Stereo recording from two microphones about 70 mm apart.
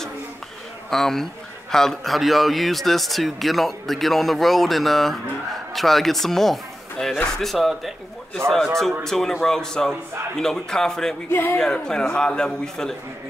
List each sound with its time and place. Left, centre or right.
0.8 s a man's voice: centre
11.2 s speech: left
11.5 s speech: centre